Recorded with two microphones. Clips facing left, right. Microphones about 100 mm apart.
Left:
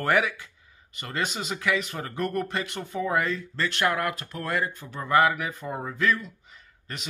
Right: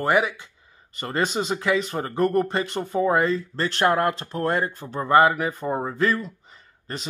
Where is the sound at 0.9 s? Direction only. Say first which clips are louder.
Right 6 dB; 35° right (ahead or behind).